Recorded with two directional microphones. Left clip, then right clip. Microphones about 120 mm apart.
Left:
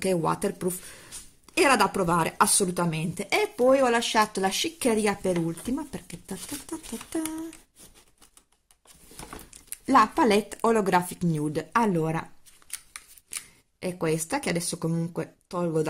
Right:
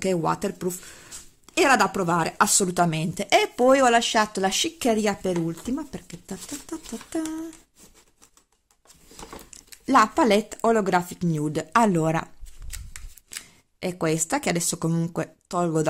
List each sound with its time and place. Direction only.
0.0 s speech: 15° right (ahead or behind)
2.7 s speech: 40° right (ahead or behind)
3.6 s speech: 55° right (ahead or behind)
3.9 s speech: 25° right (ahead or behind)
9.8 s speech: 20° right (ahead or behind)
11.4 s speech: 30° right (ahead or behind)
13.7 s speech: 30° right (ahead or behind)